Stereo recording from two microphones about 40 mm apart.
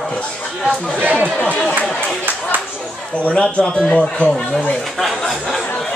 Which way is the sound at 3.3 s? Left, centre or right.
Left.